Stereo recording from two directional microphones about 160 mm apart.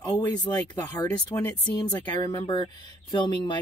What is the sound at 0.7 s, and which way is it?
Speech, 20° left (ahead or behind).